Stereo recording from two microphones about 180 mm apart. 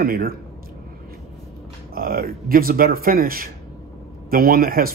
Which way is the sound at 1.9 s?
55° right (ahead or behind).